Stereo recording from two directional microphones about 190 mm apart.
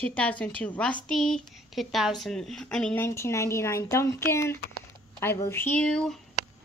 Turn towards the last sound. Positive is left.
turn(degrees=5)  # may be behind; listen again after turning